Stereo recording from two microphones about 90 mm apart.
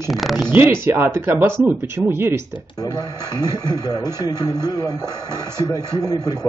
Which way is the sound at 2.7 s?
45° left (ahead or behind).